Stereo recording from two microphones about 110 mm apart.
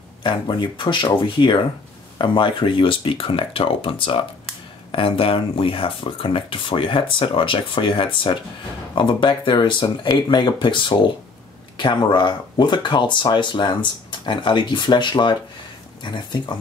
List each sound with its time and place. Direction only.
0.2 s speech: 45° left (ahead or behind)